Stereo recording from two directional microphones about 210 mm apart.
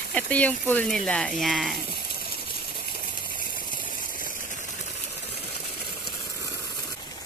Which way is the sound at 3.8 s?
40° left (ahead or behind).